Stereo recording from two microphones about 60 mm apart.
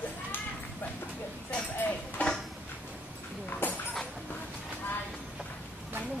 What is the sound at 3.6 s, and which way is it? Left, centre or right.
Clip-clop, left.